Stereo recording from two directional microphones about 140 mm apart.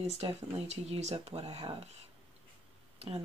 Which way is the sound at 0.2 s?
45° right (ahead or behind).